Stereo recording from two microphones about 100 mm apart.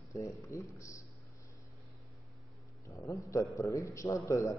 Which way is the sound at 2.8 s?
30° left (ahead or behind).